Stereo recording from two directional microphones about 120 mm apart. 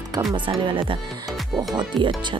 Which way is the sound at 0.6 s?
45° right (ahead or behind).